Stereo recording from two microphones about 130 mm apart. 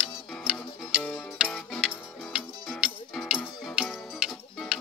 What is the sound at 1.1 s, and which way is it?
Music, centre (ahead or behind).